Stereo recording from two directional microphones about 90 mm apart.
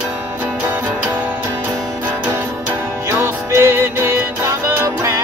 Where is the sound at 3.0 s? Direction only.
30° right (ahead or behind).